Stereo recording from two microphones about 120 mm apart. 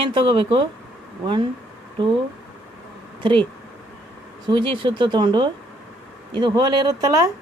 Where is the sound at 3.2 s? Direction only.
45° right (ahead or behind).